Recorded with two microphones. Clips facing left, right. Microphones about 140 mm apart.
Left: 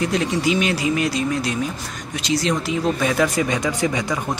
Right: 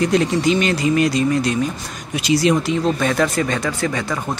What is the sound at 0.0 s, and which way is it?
Speech, centre (ahead or behind).